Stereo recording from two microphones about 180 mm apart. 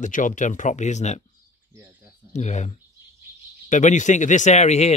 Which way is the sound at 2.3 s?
40° left (ahead or behind).